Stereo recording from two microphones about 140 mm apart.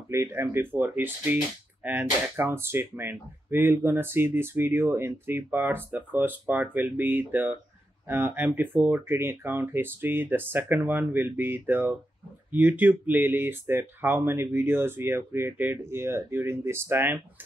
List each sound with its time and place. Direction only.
0.1 s speech: 20° right (ahead or behind)